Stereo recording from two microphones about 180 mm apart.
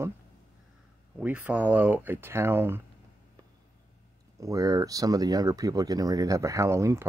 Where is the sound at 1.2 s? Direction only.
10° right (ahead or behind).